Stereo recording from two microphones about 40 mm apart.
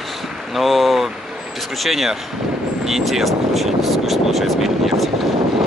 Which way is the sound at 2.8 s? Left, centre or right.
Centre.